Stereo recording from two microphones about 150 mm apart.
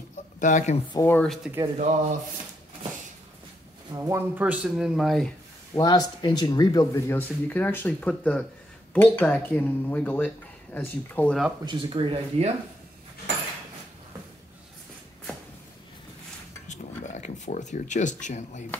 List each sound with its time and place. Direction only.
0.4 s speech: 55° left (ahead or behind)
0.9 s speech: 15° left (ahead or behind)
1.2 s speech: centre (ahead or behind)
1.8 s speech: 55° right (ahead or behind)
3.9 s speech: 25° right (ahead or behind)
4.4 s speech: 10° right (ahead or behind)
5.8 s speech: 25° left (ahead or behind)
11.6 s speech: 35° right (ahead or behind)
16.6 s a sound: 50° left (ahead or behind)
18.2 s speech: 50° left (ahead or behind)